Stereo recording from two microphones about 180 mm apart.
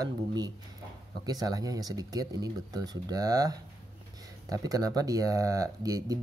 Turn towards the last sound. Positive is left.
turn(degrees=-20)  # may be behind; listen again after turning